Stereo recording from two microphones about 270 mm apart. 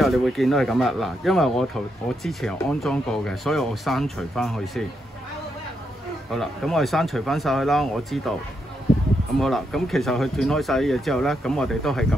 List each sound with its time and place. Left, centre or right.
0.0 s speech: centre
6.3 s speech: centre
9.4 s speech: centre